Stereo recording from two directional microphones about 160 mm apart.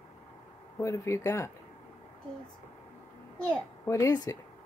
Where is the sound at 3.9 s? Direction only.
20° left (ahead or behind).